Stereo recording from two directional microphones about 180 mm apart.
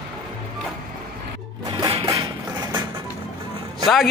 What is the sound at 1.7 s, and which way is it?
Music, 20° right (ahead or behind).